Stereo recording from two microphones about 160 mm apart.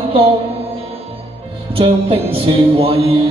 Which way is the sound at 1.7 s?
35° right (ahead or behind).